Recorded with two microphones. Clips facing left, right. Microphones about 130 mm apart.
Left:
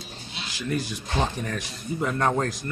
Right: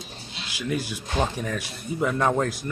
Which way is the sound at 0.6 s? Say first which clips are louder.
Right 1 dB; 5° right (ahead or behind).